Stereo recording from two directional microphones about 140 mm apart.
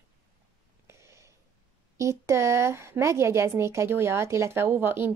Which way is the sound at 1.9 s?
20° right (ahead or behind).